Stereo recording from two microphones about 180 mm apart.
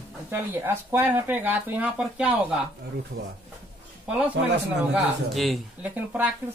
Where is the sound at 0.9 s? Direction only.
10° right (ahead or behind).